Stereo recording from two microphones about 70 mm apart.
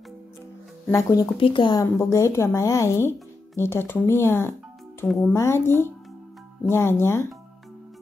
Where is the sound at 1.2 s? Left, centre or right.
Left.